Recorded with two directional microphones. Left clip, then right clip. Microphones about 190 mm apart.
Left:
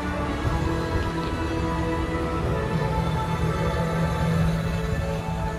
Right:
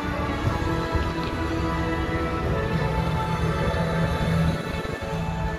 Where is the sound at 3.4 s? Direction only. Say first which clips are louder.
Right 1 dB; 25° left (ahead or behind).